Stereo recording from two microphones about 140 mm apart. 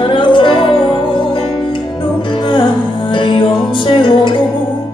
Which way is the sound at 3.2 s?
35° left (ahead or behind).